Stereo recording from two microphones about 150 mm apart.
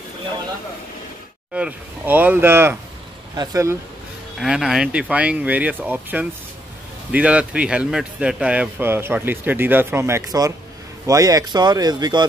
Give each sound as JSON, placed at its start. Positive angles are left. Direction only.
{"t": 1.5, "sound": "speech", "side_deg": -10}
{"t": 4.4, "sound": "speech", "side_deg": 0}